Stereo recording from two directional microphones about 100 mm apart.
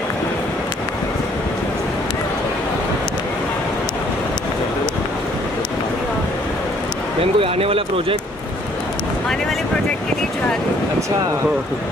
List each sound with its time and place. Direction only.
7.3 s speech: 70° right (ahead or behind)